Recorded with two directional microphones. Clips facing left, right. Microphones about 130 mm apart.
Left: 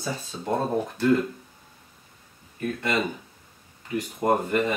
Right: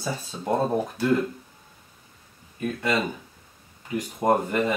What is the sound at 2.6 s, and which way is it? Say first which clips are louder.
Speech: right 1 dB; 15° right (ahead or behind).